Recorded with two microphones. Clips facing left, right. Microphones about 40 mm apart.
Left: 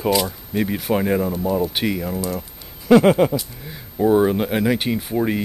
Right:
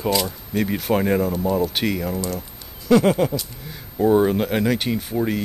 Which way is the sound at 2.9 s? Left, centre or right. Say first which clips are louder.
Left 3 dB; left.